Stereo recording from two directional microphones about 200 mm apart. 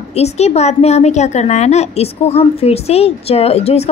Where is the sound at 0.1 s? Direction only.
30° left (ahead or behind).